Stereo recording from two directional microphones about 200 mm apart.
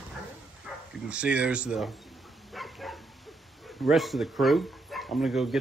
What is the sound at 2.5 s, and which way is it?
Dog, centre (ahead or behind).